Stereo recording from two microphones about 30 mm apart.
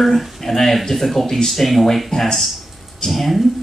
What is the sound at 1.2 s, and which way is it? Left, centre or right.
Speech, centre.